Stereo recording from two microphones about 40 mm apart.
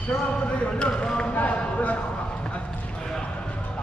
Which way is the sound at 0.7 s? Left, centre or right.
Left.